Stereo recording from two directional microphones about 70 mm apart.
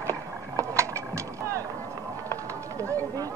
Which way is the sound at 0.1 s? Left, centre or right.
Right.